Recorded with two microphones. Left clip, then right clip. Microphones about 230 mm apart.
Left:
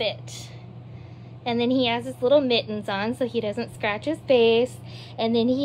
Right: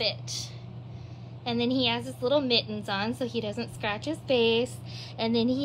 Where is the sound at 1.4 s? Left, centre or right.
Centre.